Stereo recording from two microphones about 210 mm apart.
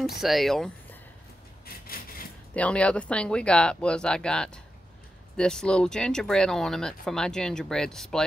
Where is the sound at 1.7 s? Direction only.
45° left (ahead or behind).